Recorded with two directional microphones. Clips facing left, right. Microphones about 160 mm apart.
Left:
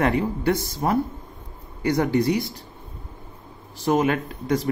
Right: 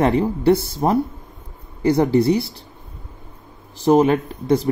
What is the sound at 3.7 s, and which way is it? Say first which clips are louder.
Speech: right 6 dB; 35° right (ahead or behind).